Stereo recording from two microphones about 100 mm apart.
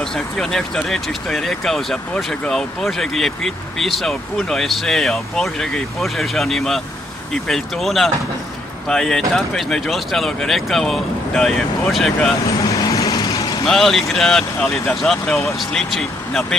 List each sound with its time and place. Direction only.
0.0 s speech: 5° left (ahead or behind)
12.4 s vehicle: 35° left (ahead or behind)
13.7 s speech: 5° left (ahead or behind)